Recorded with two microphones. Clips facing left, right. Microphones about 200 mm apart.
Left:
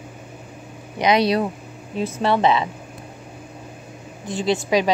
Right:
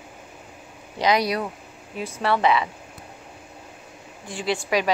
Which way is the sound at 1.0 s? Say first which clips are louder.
Left 4 dB; 25° left (ahead or behind).